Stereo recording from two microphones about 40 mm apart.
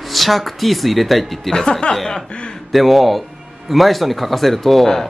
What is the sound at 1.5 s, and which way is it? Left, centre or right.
Mantra, left.